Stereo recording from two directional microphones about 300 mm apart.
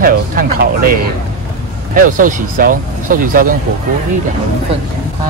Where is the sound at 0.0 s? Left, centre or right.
Right.